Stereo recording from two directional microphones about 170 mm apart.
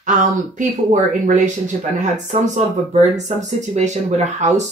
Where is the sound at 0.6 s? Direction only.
45° right (ahead or behind).